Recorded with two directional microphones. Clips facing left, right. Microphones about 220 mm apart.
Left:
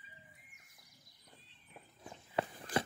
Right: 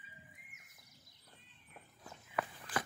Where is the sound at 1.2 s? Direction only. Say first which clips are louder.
Left 2 dB; 15° left (ahead or behind).